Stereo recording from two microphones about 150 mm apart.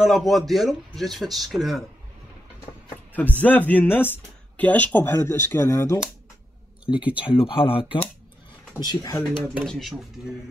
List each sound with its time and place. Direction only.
0.0 s speech: centre (ahead or behind)
3.2 s speech: 10° left (ahead or behind)
7.2 s speech: 35° left (ahead or behind)
8.8 s speech: 25° left (ahead or behind)
9.7 s speech: centre (ahead or behind)